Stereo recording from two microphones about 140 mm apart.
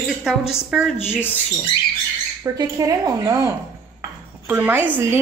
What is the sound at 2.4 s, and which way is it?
A woman's voice, 25° right (ahead or behind).